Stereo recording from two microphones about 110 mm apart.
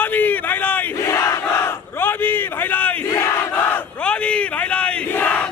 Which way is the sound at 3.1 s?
25° left (ahead or behind).